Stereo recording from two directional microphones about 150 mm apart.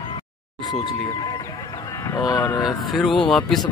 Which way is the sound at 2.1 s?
25° left (ahead or behind).